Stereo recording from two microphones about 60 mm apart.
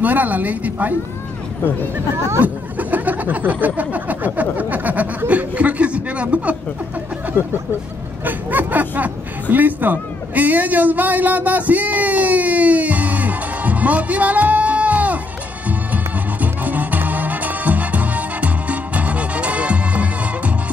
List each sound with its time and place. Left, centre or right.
0.0 s speech: right
2.1 s speech: right
2.4 s speech: right
8.3 s speech: right
15.9 s music: right